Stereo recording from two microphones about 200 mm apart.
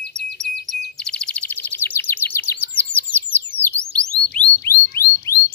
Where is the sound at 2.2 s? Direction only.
10° left (ahead or behind).